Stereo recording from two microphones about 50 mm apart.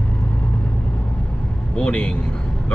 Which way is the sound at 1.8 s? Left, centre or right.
Left.